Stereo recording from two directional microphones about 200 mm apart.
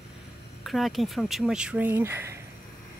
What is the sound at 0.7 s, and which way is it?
Speech, centre (ahead or behind).